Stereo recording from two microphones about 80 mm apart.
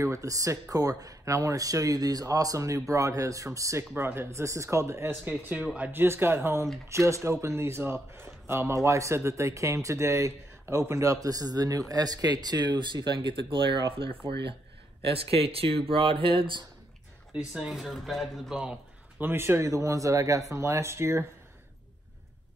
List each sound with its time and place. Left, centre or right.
0.0 s speech: right
3.9 s speech: right
5.4 s speech: right
16.0 s speech: right
17.4 s speech: centre
18.6 s a sound: centre
19.2 s speech: right